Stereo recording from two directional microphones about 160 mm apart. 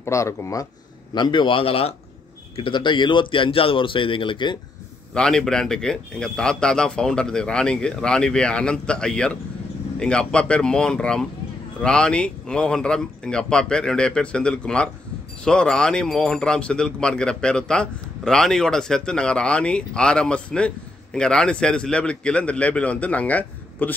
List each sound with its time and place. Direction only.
0.0 s speech: 20° left (ahead or behind)
5.1 s speech: 5° left (ahead or behind)